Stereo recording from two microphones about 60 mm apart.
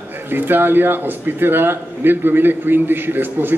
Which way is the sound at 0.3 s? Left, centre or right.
Right.